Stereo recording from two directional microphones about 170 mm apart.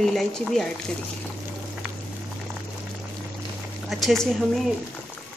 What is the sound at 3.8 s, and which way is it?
Speech, centre (ahead or behind).